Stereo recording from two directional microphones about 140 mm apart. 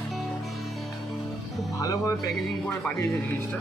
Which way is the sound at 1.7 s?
25° left (ahead or behind).